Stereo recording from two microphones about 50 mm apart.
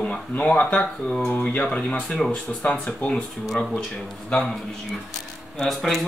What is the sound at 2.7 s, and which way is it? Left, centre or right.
Speech, left.